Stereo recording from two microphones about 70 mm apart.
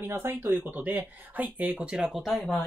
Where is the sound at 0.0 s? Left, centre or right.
Right.